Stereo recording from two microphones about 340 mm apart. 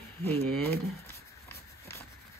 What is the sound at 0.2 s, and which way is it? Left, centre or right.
Speech, centre.